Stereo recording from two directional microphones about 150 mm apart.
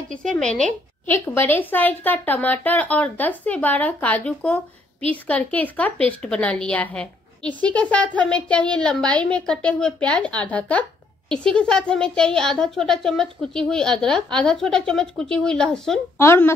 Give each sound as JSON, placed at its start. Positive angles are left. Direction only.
{"t": 0.1, "sound": "a woman's voice", "side_deg": 5}
{"t": 16.2, "sound": "a woman's voice", "side_deg": 15}